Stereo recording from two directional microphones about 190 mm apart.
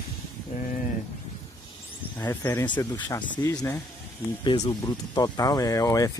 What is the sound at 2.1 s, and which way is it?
Speech, 15° left (ahead or behind).